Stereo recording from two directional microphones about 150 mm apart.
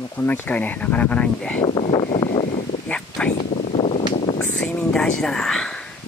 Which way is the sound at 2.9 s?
5° left (ahead or behind).